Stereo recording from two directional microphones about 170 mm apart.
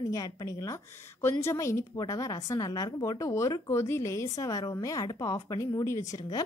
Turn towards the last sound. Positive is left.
turn(degrees=20)  # may be behind; listen again after turning